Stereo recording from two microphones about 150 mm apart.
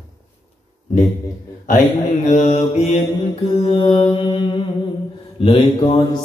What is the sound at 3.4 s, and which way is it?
Mantra, 40° left (ahead or behind).